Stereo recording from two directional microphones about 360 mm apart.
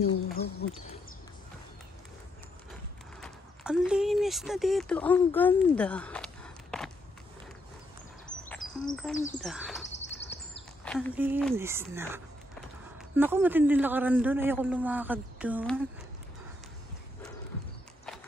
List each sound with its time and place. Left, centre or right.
0.0 s speech: left
3.2 s speech: centre
8.3 s a sound: centre
8.9 s a man's voice: centre
10.9 s a man's voice: centre